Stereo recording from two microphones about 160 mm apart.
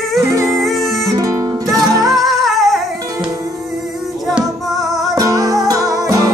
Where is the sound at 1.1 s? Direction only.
20° right (ahead or behind).